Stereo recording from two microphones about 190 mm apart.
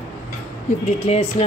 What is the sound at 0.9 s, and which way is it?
Speech, 35° left (ahead or behind).